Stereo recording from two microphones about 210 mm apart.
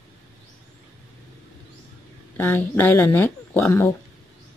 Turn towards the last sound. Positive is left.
turn(degrees=10)  # may be behind; listen again after turning